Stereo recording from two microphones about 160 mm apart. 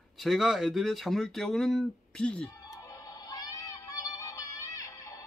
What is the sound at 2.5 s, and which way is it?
Synthetic singing, 20° left (ahead or behind).